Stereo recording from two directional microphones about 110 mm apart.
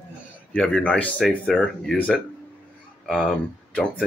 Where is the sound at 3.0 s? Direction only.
5° left (ahead or behind).